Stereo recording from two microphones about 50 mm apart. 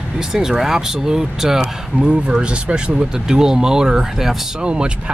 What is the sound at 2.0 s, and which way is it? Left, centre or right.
Speech, right.